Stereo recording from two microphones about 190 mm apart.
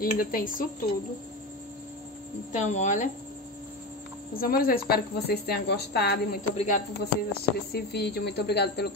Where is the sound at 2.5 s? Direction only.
40° left (ahead or behind).